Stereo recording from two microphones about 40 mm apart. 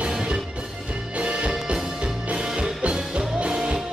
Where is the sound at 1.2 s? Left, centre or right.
Right.